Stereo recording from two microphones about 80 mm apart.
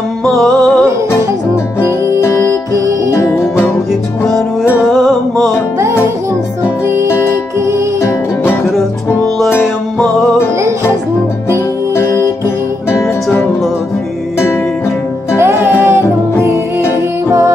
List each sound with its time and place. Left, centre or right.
0.2 s music: centre
2.1 s music: left
4.9 s music: centre
11.9 s music: left
15.3 s music: right